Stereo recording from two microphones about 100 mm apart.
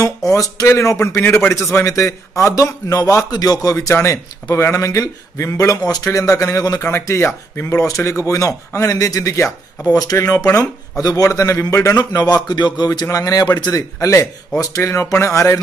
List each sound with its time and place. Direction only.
0.0 s a man's voice: 35° left (ahead or behind)
6.8 s a man's voice: 25° left (ahead or behind)